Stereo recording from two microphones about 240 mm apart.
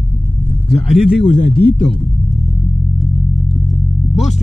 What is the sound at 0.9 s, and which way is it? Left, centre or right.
Speech, centre.